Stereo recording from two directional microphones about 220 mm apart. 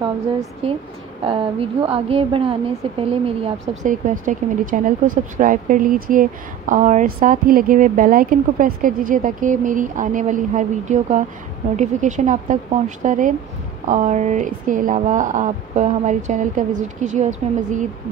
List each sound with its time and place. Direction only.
0.6 s a woman's voice: 30° right (ahead or behind)